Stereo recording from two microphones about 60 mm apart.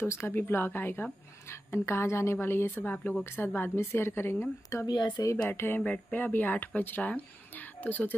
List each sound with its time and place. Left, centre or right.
0.3 s a woman's voice: left
1.5 s a woman's voice: left
2.7 s a woman's voice: left
4.6 s speech: left
5.5 s a woman's voice: left